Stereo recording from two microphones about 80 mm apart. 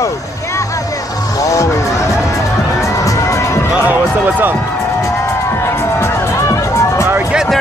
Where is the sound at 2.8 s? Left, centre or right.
Left.